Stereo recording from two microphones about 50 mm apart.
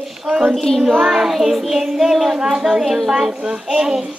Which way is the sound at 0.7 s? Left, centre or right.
Centre.